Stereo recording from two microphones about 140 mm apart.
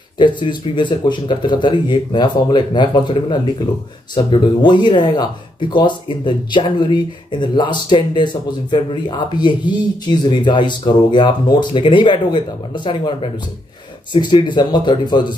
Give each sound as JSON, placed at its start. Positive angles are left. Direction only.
{"t": 0.2, "sound": "speech", "side_deg": 35}